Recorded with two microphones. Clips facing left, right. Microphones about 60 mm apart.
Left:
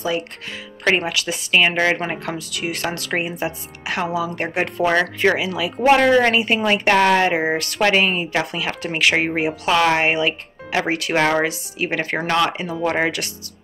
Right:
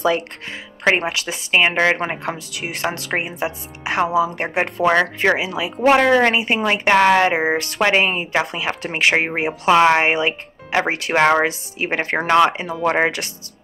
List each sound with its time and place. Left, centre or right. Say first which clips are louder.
0.9 s a woman's voice: even; right